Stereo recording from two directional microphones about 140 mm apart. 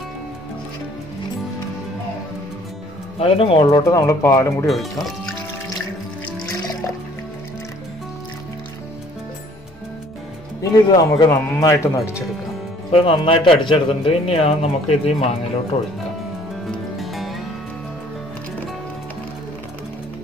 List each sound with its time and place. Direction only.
3.2 s speech: 40° left (ahead or behind)
3.8 s speech: 20° left (ahead or behind)
10.6 s speech: 25° left (ahead or behind)
11.2 s speech: 15° left (ahead or behind)
12.9 s speech: 40° left (ahead or behind)
16.6 s music: centre (ahead or behind)